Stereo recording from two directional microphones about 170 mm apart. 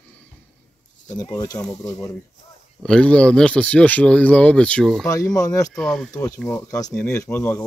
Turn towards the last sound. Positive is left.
turn(degrees=15)  # may be behind; listen again after turning